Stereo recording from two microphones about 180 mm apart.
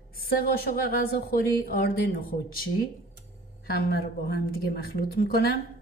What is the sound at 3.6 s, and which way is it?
A woman's voice, 55° left (ahead or behind).